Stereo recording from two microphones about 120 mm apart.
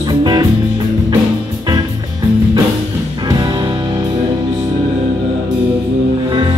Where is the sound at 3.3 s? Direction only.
35° right (ahead or behind).